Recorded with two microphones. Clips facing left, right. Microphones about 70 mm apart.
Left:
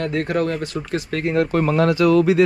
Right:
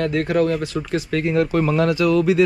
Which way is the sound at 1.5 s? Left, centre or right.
Left.